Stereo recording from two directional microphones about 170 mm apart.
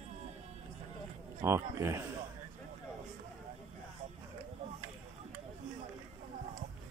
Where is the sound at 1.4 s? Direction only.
15° right (ahead or behind).